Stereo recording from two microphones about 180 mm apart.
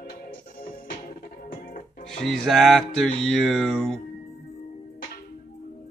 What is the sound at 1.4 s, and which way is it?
Music, 50° left (ahead or behind).